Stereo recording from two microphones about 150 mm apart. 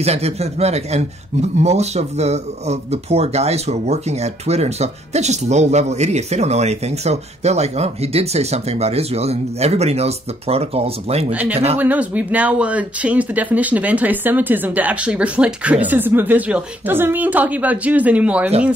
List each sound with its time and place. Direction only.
0.0 s a man's voice: 45° right (ahead or behind)
11.3 s speech: 10° right (ahead or behind)